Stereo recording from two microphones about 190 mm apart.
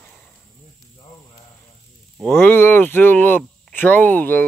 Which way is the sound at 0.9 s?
25° left (ahead or behind).